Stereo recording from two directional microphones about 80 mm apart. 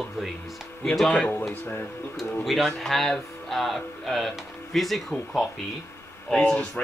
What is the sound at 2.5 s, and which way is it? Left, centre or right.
Speech, centre.